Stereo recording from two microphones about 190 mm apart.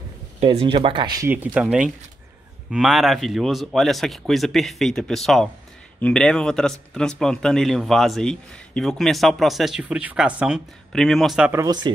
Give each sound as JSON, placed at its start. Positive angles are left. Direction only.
{"t": 0.4, "sound": "speech", "side_deg": -30}
{"t": 1.3, "sound": "speech", "side_deg": -5}
{"t": 11.5, "sound": "speech", "side_deg": -20}